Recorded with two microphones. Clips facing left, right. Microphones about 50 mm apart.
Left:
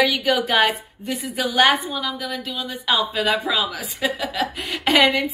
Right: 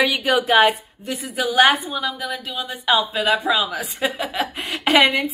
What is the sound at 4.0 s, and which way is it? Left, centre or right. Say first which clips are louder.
Speech: left 1 dB; right.